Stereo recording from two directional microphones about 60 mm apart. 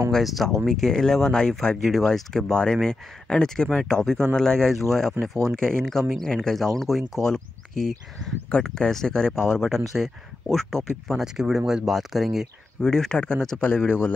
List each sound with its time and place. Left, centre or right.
0.2 s speech: centre
5.2 s speech: right
5.6 s speech: centre
11.3 s speech: centre
12.8 s speech: centre